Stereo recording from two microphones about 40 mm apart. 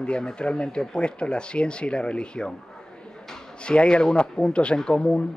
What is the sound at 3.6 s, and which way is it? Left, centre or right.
Speech, left.